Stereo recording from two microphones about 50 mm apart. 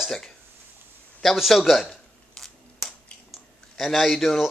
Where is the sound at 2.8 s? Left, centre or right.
Centre.